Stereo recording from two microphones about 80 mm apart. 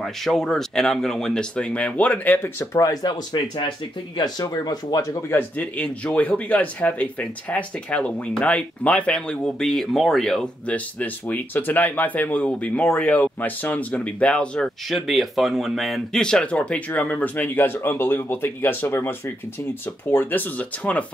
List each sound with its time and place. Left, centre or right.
0.0 s speech: centre; by 2.4 s left
2.7 s speech: left
4.2 s speech: left
5.3 s speech: left; by 10.5 s centre
10.7 s speech: centre
14.9 s speech: centre